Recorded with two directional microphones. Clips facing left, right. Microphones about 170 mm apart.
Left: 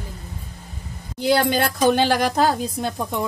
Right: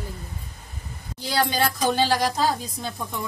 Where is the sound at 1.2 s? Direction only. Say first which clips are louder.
Left 5 dB; 60° left (ahead or behind).